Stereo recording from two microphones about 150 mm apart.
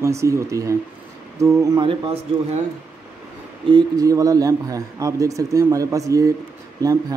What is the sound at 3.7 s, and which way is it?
Speech, 25° right (ahead or behind).